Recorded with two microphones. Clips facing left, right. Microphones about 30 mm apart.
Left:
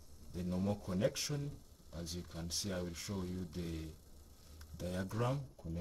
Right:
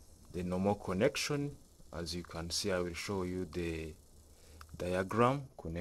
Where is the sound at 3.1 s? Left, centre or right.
Right.